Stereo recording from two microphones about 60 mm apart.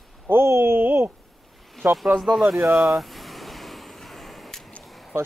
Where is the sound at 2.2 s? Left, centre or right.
Centre.